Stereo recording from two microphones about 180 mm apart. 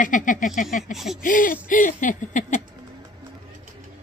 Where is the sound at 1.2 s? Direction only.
50° left (ahead or behind).